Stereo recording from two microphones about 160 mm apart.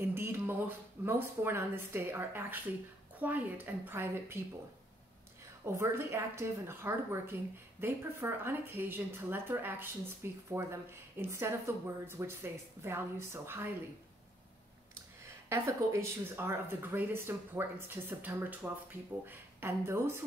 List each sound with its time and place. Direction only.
0.0 s speech: 15° right (ahead or behind)
5.7 s speech: 15° right (ahead or behind)
15.5 s speech: 15° right (ahead or behind)